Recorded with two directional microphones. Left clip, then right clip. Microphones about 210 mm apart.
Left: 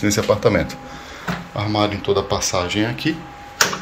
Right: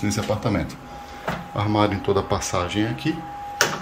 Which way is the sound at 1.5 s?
15° right (ahead or behind).